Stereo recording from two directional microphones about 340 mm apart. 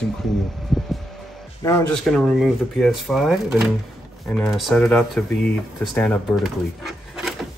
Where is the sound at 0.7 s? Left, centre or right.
Centre.